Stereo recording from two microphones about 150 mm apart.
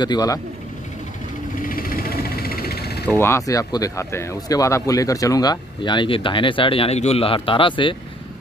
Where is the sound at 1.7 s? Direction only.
70° left (ahead or behind); by 3.1 s 90° left.